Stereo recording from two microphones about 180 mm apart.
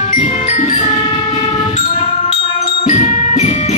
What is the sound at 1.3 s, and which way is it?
Train, 40° left (ahead or behind).